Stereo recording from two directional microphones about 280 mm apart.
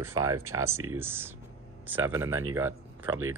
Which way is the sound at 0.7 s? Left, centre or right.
Right.